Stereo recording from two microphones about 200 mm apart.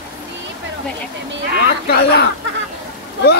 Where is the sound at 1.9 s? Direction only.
55° left (ahead or behind).